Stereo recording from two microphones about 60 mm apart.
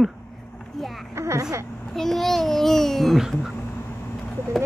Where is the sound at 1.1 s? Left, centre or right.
Right.